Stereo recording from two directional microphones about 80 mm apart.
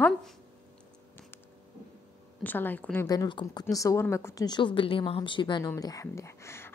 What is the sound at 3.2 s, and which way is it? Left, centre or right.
Speech, left.